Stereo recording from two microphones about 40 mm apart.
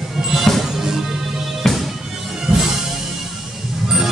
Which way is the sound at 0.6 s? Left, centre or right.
Centre.